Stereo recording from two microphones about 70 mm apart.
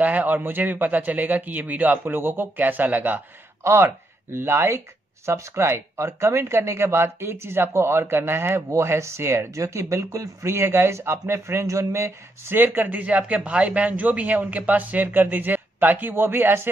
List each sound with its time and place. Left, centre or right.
0.0 s speech: right
3.6 s speech: right